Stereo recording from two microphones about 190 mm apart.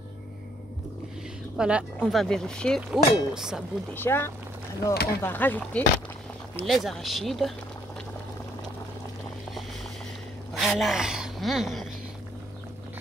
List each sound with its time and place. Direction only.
1.6 s speech: 5° right (ahead or behind)
3.9 s speech: 10° left (ahead or behind)
4.9 s speech: 55° left (ahead or behind)
5.2 s speech: 10° left (ahead or behind)
10.5 s speech: centre (ahead or behind)